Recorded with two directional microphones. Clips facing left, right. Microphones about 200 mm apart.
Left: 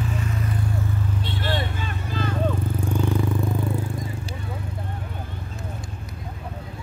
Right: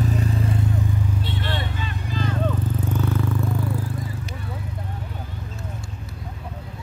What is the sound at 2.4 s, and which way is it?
Vehicle, 10° left (ahead or behind).